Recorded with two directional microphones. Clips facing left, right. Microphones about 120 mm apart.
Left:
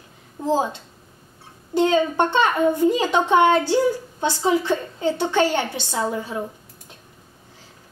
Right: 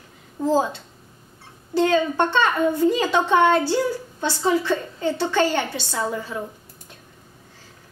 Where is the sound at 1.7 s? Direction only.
20° left (ahead or behind).